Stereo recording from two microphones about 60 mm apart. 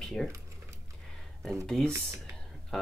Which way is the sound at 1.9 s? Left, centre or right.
Right.